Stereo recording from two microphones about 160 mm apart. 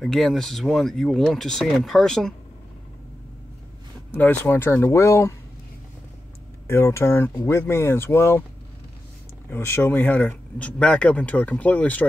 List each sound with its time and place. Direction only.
0.0 s speech: centre (ahead or behind)
4.1 s speech: 10° left (ahead or behind)
6.7 s speech: 15° left (ahead or behind)
9.5 s speech: 15° left (ahead or behind)